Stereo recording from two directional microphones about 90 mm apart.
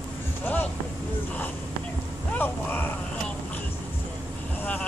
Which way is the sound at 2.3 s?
20° left (ahead or behind).